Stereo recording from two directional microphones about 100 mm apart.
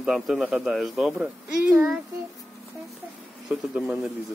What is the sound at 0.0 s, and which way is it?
Speech, 5° right (ahead or behind).